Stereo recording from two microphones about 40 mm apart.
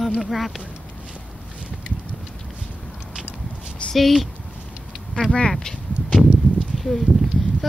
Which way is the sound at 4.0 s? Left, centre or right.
Centre.